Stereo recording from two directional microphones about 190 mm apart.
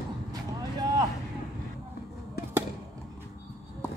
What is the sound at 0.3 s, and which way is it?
Vehicle, 20° right (ahead or behind).